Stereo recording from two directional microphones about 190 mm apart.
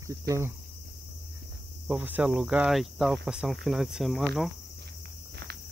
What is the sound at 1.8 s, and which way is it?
Cricket, 10° right (ahead or behind).